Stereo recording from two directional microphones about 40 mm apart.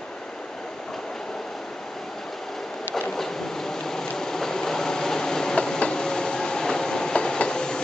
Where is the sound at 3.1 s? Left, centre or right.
Centre.